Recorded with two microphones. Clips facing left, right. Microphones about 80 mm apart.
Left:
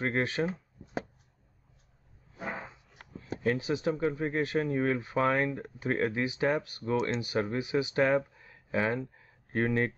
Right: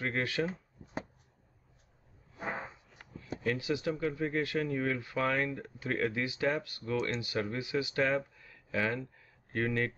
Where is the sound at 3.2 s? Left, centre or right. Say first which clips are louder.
Left 4 dB; left.